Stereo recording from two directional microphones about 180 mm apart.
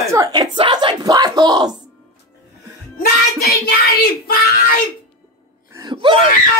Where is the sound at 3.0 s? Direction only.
55° left (ahead or behind).